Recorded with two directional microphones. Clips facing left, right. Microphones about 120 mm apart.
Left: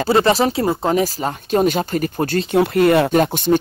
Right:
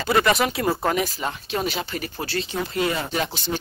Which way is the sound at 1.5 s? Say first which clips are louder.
Left 12 dB; 45° left (ahead or behind).